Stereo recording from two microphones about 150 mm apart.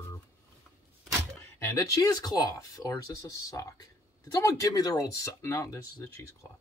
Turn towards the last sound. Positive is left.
turn(degrees=20)  # may be behind; listen again after turning